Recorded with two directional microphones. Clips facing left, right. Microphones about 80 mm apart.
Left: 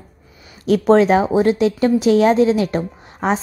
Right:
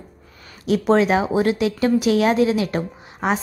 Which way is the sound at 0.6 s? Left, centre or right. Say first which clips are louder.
Left 4 dB; left.